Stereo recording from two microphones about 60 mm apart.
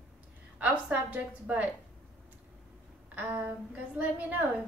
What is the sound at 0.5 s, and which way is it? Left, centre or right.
A woman's voice, right.